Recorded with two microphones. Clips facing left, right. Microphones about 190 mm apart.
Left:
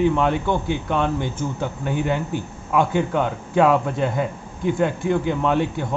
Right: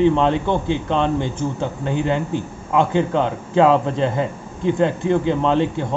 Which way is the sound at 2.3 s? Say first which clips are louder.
Right 2 dB; 20° right (ahead or behind).